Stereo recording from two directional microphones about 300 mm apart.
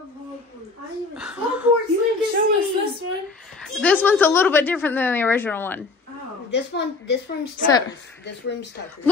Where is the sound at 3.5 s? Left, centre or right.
Centre.